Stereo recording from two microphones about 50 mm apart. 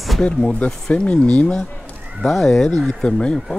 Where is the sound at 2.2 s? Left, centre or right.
Centre.